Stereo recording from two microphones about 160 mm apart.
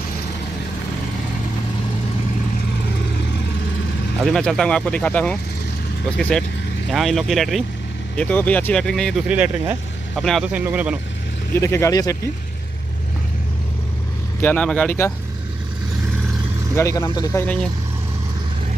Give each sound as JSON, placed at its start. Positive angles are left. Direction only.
{"t": 4.2, "sound": "speech", "side_deg": 0}
{"t": 6.9, "sound": "speech", "side_deg": 0}
{"t": 9.3, "sound": "speech", "side_deg": -10}
{"t": 10.5, "sound": "speech", "side_deg": -10}
{"t": 11.5, "sound": "speech", "side_deg": 15}
{"t": 14.4, "sound": "speech", "side_deg": 10}
{"t": 16.7, "sound": "speech", "side_deg": 20}